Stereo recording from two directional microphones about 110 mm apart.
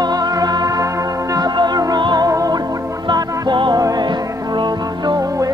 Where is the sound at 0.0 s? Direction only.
40° right (ahead or behind).